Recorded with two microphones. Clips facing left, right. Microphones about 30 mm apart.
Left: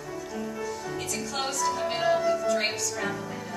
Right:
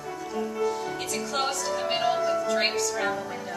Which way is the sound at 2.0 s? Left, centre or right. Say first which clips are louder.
Left 2 dB; centre.